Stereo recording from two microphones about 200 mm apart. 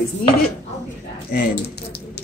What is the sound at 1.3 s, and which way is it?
Speech, 50° left (ahead or behind).